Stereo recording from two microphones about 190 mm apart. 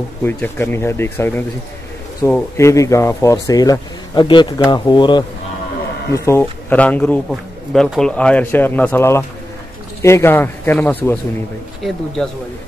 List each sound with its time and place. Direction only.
0.2 s speech: 10° left (ahead or behind)
2.5 s speech: 15° left (ahead or behind)